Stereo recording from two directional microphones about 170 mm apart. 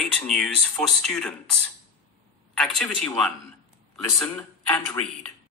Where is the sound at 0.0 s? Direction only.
5° left (ahead or behind).